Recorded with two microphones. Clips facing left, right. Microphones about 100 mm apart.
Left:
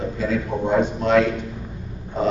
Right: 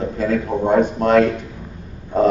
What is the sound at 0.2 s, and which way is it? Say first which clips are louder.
A man's voice: right 4 dB; 50° right (ahead or behind).